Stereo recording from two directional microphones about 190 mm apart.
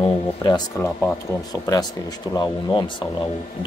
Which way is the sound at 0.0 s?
20° left (ahead or behind).